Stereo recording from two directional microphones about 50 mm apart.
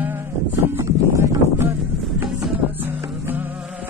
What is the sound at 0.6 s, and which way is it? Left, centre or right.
Music, right.